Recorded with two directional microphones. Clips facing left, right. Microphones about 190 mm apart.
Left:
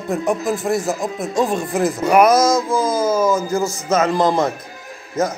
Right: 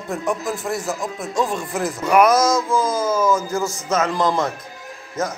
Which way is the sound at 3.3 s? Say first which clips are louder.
Left 2 dB; 20° left (ahead or behind).